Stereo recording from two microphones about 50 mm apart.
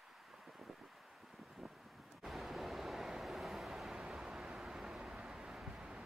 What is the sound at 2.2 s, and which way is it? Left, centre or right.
Vehicle, centre.